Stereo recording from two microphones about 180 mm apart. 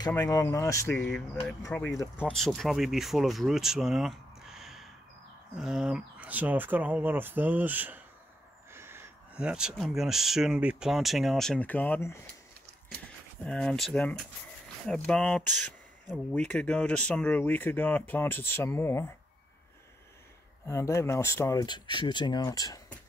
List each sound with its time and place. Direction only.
0.1 s speech: 15° left (ahead or behind)
2.2 s speech: centre (ahead or behind)
13.4 s speech: 5° left (ahead or behind)
20.6 s speech: 15° left (ahead or behind)